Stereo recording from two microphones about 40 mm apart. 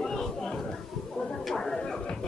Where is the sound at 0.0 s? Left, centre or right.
Centre.